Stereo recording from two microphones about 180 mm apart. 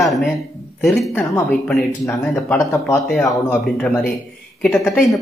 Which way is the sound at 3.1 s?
5° left (ahead or behind).